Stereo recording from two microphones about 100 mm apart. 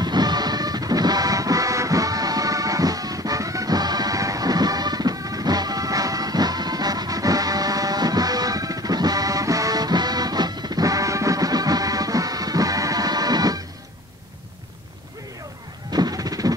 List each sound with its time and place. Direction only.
0.0 s music: 45° right (ahead or behind)
15.9 s music: 40° right (ahead or behind)